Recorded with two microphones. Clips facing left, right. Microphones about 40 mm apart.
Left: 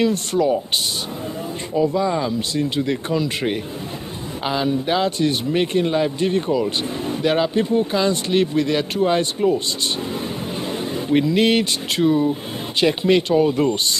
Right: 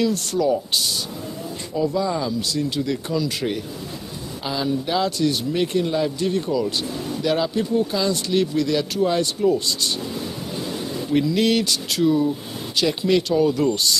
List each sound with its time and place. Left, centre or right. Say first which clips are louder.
0.0 s speech: left 2 dB; left
10.9 s speech: left 3 dB; left